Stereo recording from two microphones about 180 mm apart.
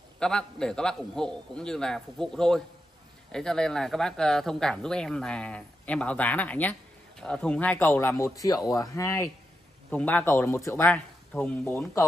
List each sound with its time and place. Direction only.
0.2 s a man's voice: 5° left (ahead or behind)